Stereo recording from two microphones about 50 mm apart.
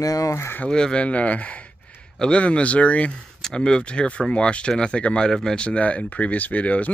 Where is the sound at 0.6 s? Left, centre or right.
Centre.